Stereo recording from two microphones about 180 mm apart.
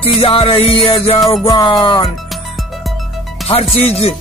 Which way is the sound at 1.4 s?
25° left (ahead or behind).